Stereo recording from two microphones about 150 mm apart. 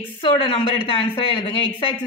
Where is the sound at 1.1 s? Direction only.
35° left (ahead or behind).